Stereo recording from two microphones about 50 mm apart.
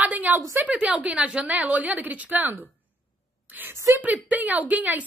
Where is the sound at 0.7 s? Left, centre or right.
Centre; by 2.6 s right.